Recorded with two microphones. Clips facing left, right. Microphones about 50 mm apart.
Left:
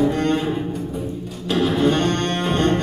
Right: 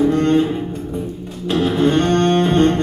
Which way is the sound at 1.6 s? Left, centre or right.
Right.